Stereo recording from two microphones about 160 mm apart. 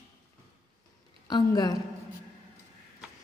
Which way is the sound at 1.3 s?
25° left (ahead or behind).